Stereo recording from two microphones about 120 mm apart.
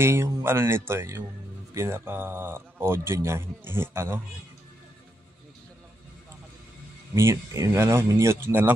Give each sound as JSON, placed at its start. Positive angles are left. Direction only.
{"t": 0.0, "sound": "speech", "side_deg": -20}
{"t": 7.2, "sound": "speech", "side_deg": -25}